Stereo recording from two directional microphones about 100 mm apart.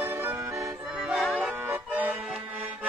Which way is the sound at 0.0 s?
25° right (ahead or behind).